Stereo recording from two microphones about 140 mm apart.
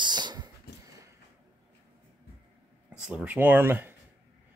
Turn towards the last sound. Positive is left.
turn(degrees=-15)  # may be behind; listen again after turning